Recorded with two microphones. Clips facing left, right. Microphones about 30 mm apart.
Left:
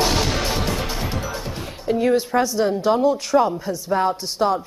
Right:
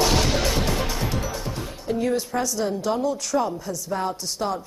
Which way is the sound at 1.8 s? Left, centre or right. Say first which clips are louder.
Left 6 dB; left.